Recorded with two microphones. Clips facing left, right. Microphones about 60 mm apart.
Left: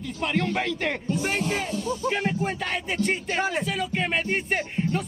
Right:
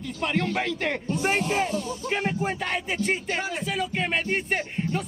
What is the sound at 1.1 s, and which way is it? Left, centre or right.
Music, right.